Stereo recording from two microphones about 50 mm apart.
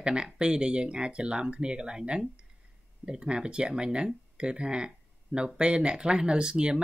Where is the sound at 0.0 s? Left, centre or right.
Centre.